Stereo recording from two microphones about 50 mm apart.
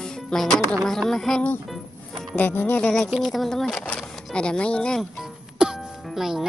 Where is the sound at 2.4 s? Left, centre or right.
Left.